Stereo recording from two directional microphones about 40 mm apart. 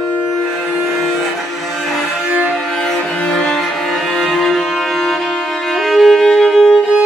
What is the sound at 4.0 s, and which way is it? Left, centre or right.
Music, centre.